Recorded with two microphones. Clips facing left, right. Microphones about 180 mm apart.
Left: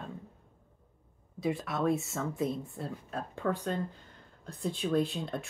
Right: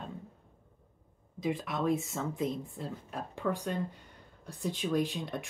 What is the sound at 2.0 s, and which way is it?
Speech, 20° right (ahead or behind).